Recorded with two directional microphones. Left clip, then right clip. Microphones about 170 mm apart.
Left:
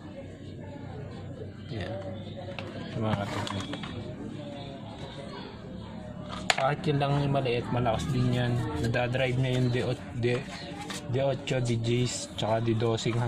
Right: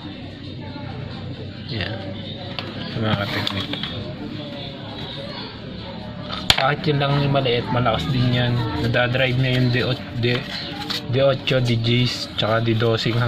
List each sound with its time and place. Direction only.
3.0 s speech: 5° left (ahead or behind)
6.3 s speech: 10° left (ahead or behind)
11.1 s speech: 5° right (ahead or behind)